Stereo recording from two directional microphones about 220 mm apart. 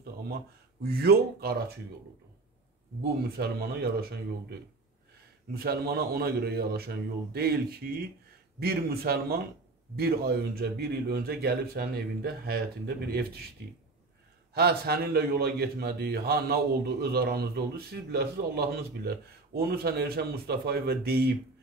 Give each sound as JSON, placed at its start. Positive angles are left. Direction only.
{"t": 0.8, "sound": "a man's voice", "side_deg": -45}
{"t": 3.0, "sound": "a man's voice", "side_deg": -45}
{"t": 14.5, "sound": "a man's voice", "side_deg": -45}